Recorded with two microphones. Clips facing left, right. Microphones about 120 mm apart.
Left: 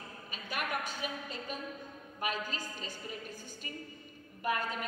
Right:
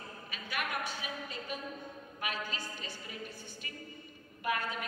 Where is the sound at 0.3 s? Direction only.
40° left (ahead or behind).